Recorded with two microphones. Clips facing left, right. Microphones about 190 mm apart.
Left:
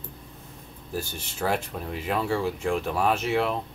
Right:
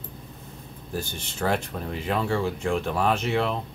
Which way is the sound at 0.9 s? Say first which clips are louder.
Even; 5° left (ahead or behind).